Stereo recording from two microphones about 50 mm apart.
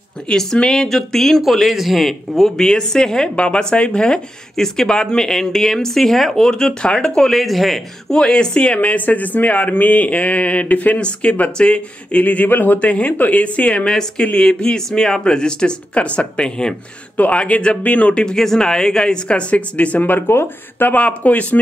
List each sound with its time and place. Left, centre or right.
0.4 s speech: centre
8.1 s speech: centre
12.2 s speech: left
12.7 s speech: left